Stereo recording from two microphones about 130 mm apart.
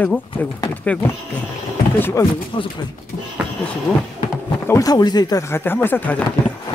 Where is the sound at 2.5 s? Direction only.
40° left (ahead or behind).